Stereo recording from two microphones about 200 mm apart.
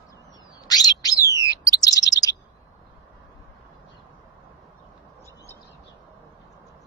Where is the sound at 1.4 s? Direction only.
20° left (ahead or behind).